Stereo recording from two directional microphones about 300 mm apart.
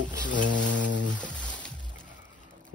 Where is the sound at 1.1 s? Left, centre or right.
Centre.